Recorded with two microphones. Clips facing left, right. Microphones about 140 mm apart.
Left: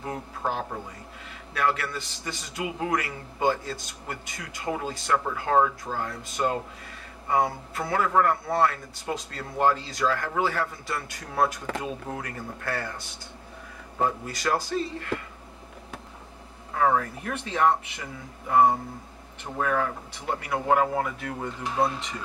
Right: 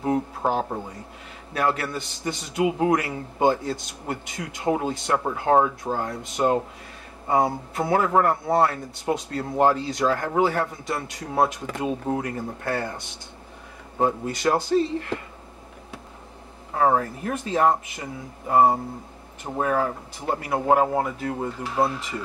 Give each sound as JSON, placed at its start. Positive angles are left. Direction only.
{"t": 0.0, "sound": "speech", "side_deg": -20}
{"t": 0.5, "sound": "speech", "side_deg": -35}
{"t": 16.7, "sound": "speech", "side_deg": -30}